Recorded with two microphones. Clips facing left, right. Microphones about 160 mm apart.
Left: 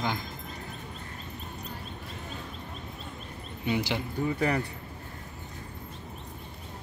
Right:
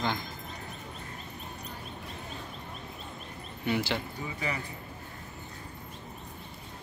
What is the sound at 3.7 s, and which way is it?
Speech, 15° left (ahead or behind).